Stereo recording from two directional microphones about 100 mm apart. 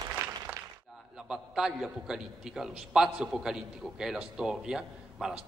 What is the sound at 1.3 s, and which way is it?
A man's voice, 5° right (ahead or behind).